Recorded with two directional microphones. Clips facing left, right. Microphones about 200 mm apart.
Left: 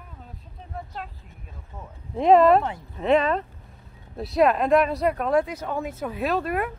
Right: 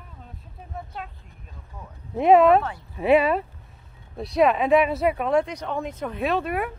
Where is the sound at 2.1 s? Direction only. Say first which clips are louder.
Even; 5° right (ahead or behind).